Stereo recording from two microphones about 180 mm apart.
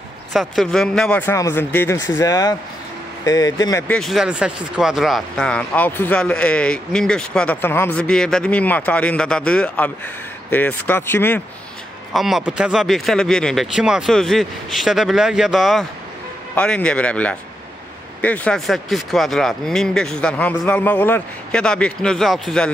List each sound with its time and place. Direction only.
0.3 s speech: centre (ahead or behind); by 3.8 s 20° left (ahead or behind)
3.8 s speech: 5° left (ahead or behind)
12.1 s speech: centre (ahead or behind)